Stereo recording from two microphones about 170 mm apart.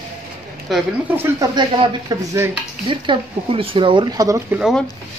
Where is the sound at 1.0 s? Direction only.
15° right (ahead or behind).